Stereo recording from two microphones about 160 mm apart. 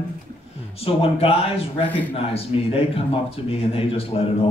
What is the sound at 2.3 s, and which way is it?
Speech, 40° left (ahead or behind).